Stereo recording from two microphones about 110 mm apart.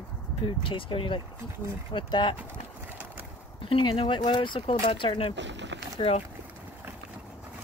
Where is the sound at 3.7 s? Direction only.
55° left (ahead or behind).